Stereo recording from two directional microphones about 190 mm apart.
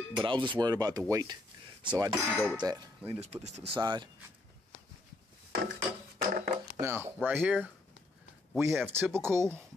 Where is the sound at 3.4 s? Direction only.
35° right (ahead or behind).